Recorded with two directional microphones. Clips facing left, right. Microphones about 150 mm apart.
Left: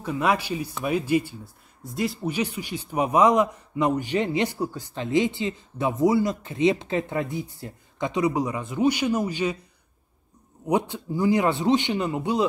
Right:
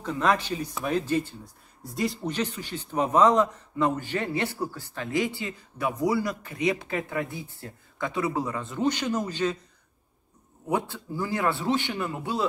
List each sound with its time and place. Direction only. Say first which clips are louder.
0.0 s a man's voice: left 1 dB; 10° left (ahead or behind)
10.7 s a man's voice: left 4 dB; 15° left (ahead or behind)